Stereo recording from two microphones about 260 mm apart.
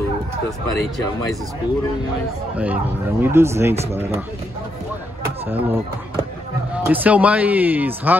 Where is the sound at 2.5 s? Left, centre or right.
Centre.